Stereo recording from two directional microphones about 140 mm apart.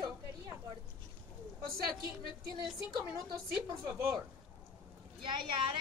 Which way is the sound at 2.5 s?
35° right (ahead or behind).